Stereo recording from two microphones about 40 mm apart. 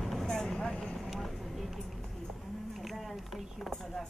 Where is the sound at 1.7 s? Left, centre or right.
Centre.